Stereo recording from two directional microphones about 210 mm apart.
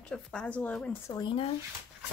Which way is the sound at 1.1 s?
20° left (ahead or behind).